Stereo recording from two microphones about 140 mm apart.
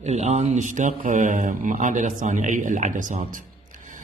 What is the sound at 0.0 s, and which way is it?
Speech, 50° right (ahead or behind).